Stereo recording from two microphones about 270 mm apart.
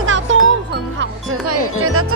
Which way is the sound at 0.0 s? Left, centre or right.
Right.